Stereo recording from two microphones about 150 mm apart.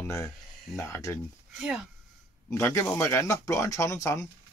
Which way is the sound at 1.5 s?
5° right (ahead or behind).